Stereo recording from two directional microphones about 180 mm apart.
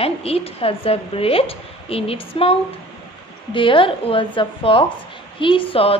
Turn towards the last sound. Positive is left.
turn(degrees=30)  # may be behind; listen again after turning